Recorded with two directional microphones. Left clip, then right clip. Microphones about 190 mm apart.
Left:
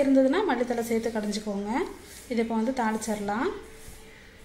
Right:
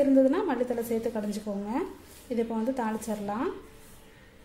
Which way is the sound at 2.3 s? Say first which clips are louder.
Left 2 dB; centre (ahead or behind).